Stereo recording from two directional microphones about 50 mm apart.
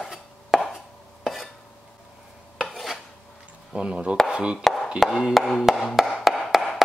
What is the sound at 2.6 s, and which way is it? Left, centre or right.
Filing, centre.